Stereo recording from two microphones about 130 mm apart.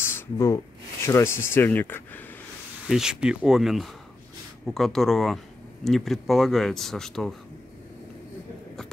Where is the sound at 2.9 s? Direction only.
5° right (ahead or behind).